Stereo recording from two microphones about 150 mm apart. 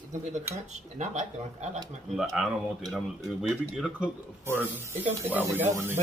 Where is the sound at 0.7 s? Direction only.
50° right (ahead or behind).